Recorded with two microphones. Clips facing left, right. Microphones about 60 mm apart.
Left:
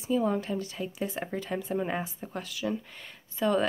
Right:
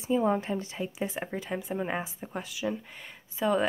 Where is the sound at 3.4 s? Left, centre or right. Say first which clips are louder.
Even; centre.